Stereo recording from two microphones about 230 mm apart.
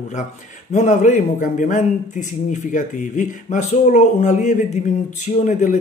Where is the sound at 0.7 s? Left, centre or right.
Left.